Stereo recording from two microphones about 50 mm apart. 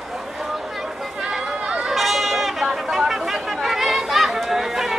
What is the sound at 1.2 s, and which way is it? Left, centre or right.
Run, centre.